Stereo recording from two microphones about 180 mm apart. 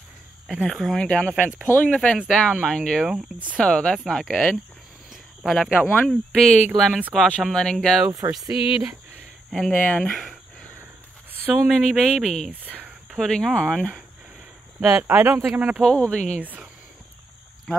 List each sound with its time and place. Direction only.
0.5 s speech: centre (ahead or behind)
8.1 s speech: 20° right (ahead or behind)
8.5 s speech: 30° left (ahead or behind)
9.5 s speech: 5° left (ahead or behind)
11.5 s speech: centre (ahead or behind)
12.6 s a sound: 10° right (ahead or behind)
13.2 s speech: centre (ahead or behind)
15.8 s speech: 5° left (ahead or behind)
16.3 s speech: 10° right (ahead or behind)